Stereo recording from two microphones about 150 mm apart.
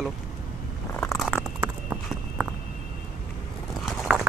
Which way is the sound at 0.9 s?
15° left (ahead or behind).